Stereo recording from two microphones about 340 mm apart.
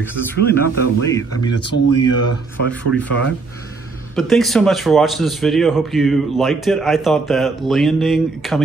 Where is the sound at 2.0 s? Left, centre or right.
Left.